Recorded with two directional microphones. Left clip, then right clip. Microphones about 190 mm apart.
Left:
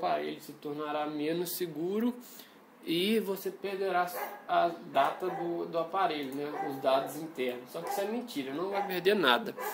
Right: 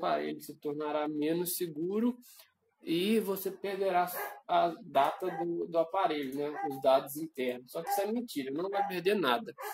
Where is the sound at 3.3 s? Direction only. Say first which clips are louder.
Even; 20° right (ahead or behind).